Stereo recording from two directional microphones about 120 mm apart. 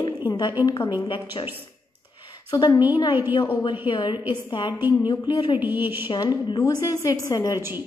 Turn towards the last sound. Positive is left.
turn(degrees=-20)  # may be behind; listen again after turning